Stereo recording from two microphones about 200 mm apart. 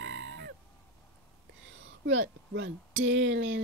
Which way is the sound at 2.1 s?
70° right (ahead or behind).